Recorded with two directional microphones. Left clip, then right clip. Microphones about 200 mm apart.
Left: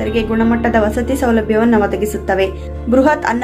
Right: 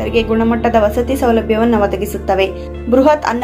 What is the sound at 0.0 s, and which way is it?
A woman's voice, 15° left (ahead or behind).